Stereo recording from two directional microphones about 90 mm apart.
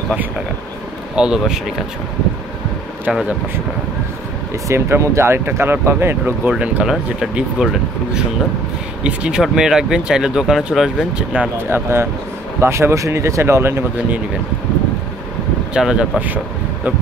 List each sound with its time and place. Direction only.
1.1 s speech: 10° right (ahead or behind)
3.1 s speech: 5° right (ahead or behind)
4.6 s speech: 30° right (ahead or behind)
6.6 s speech: 10° right (ahead or behind)
11.7 s speech: 30° right (ahead or behind)
15.7 s speech: 10° right (ahead or behind)